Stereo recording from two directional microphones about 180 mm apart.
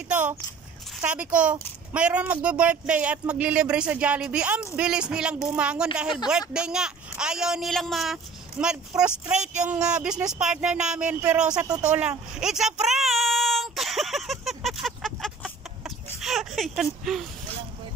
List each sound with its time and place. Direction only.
0.1 s biting: 10° right (ahead or behind)
1.3 s speech: 5° right (ahead or behind)
11.6 s speech: 20° right (ahead or behind)
11.9 s a sound: 5° right (ahead or behind)